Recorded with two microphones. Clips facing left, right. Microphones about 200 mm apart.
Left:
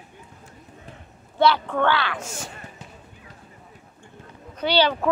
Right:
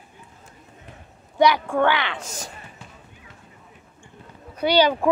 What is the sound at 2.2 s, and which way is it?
Speech, 40° right (ahead or behind).